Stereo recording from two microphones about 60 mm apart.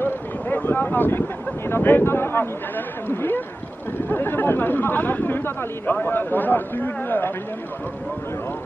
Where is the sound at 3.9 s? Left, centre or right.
Left.